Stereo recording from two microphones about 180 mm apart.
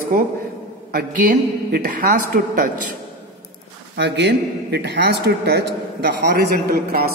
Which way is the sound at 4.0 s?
70° right (ahead or behind).